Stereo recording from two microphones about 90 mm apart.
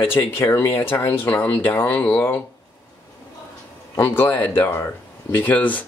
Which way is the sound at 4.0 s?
25° left (ahead or behind).